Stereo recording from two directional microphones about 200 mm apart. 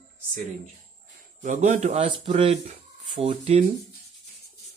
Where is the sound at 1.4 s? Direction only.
35° right (ahead or behind).